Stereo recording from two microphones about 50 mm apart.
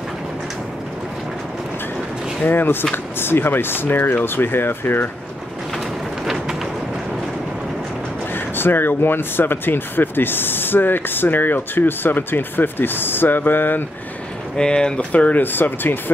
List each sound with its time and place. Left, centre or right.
2.4 s speech: left
6.2 s a sound: centre
8.5 s speech: left
14.6 s speech: centre
15.1 s speech: left
15.4 s speech: left